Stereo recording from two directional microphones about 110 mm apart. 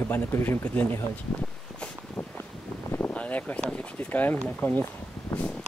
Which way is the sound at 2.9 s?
15° left (ahead or behind).